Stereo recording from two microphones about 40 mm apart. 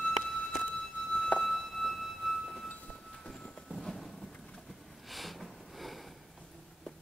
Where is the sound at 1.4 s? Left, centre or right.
Centre.